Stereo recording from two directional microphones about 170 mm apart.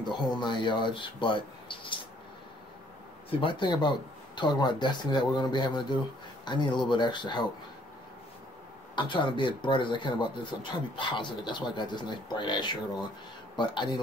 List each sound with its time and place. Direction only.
0.2 s speech: 25° left (ahead or behind)
3.3 s speech: 30° left (ahead or behind)
8.9 s speech: 30° left (ahead or behind)